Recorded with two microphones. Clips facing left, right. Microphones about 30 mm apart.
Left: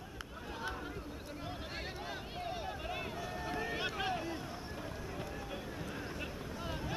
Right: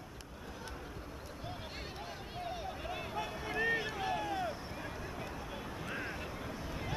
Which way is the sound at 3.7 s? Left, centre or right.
Left.